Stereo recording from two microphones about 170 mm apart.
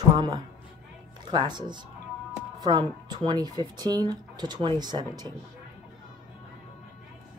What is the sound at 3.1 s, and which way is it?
Speech, 25° right (ahead or behind).